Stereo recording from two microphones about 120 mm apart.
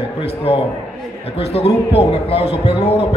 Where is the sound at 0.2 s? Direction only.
55° left (ahead or behind).